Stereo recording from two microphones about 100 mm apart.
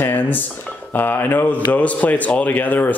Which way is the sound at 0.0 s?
20° left (ahead or behind).